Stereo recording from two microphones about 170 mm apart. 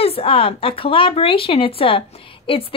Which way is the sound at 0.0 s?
35° left (ahead or behind).